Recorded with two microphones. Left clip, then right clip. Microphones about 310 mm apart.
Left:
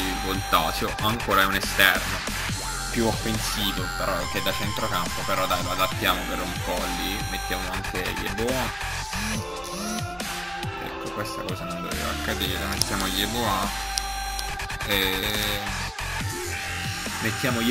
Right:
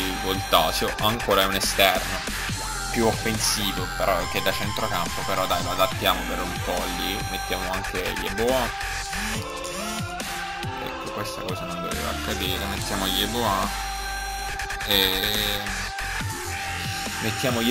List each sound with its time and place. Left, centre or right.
0.3 s speech: centre
4.4 s speech: centre
13.0 s speech: centre
14.9 s speech: centre
17.2 s speech: centre